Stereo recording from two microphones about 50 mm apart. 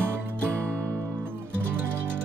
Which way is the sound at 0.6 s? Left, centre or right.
Right.